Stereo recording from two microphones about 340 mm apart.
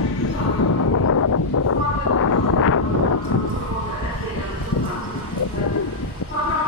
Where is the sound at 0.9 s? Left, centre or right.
Left.